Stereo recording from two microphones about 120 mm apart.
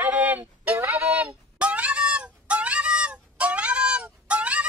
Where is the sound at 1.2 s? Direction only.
10° right (ahead or behind).